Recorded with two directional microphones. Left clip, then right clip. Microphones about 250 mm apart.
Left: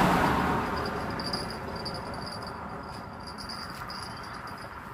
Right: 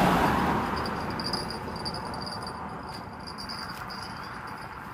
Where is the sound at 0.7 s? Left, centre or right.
Right.